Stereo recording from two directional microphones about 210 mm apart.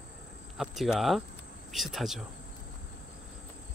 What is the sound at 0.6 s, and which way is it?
Speech, centre (ahead or behind).